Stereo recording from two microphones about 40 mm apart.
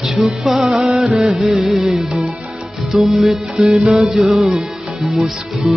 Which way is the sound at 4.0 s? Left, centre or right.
Centre.